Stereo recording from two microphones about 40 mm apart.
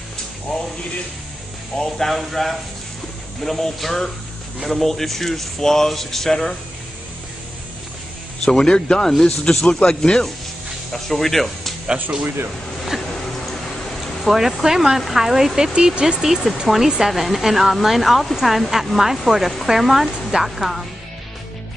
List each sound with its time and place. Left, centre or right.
0.5 s a sound: centre
1.8 s speech: centre
8.5 s speech: centre
10.9 s speech: centre
14.0 s speech: centre
15.7 s speech: right
16.2 s speech: centre